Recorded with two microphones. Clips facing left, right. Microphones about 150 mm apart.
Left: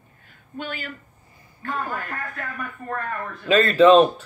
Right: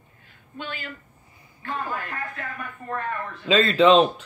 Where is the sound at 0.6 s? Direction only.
50° left (ahead or behind).